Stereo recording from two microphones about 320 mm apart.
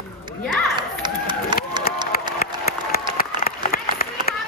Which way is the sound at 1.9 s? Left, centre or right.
Left.